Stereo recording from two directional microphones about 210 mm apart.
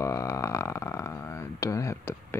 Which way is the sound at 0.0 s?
15° left (ahead or behind).